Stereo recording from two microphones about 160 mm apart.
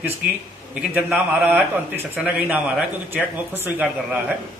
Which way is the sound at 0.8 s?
5° right (ahead or behind).